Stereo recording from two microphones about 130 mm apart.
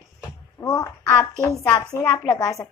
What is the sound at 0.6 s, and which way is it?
Speech, 25° left (ahead or behind).